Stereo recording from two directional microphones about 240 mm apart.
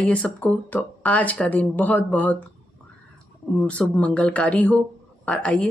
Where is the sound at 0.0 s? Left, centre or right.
Centre.